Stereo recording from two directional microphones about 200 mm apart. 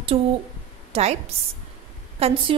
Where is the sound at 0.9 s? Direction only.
30° right (ahead or behind).